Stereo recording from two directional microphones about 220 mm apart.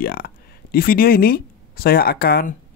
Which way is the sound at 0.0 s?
45° left (ahead or behind).